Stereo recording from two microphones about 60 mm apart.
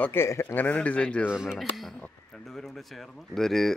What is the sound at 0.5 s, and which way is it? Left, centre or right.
Speech, left.